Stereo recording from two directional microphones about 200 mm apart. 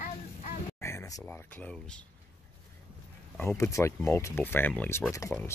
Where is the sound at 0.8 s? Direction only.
15° left (ahead or behind).